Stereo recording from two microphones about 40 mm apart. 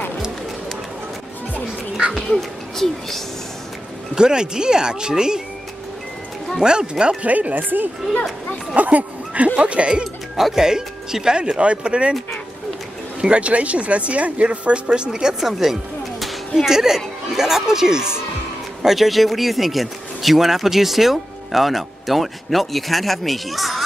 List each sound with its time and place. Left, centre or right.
2.1 s speech: centre
4.1 s speech: centre
6.6 s speech: right
7.2 s speech: right
10.3 s speech: centre
13.2 s speech: right
15.0 s speech: centre